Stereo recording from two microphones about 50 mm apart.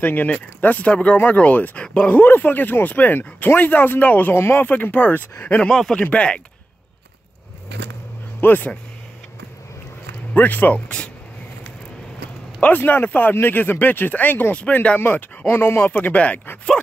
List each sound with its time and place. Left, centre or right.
0.0 s speech: left
5.7 s speech: centre
5.9 s speech: left
8.4 s speech: left
10.3 s speech: left
12.5 s speech: left
14.6 s speech: left
15.1 s speech: left
15.9 s speech: left